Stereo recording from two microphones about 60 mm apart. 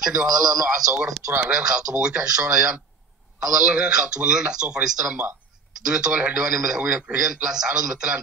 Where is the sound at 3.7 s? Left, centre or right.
Centre.